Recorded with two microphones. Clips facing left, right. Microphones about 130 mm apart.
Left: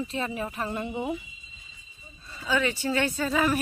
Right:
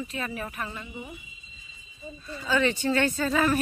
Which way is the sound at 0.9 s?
70° left (ahead or behind).